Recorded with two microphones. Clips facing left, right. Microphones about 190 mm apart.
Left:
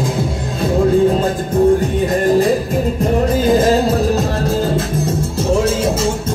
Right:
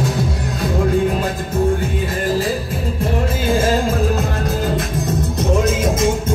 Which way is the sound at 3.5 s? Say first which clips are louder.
Left 3 dB; 35° left (ahead or behind).